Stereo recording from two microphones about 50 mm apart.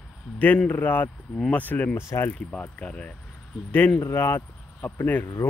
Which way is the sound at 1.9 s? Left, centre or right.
Left.